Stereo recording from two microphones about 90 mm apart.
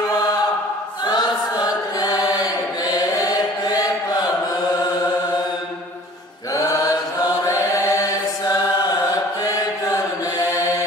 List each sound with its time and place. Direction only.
1.0 s chant: 50° left (ahead or behind)
6.5 s chant: 40° left (ahead or behind)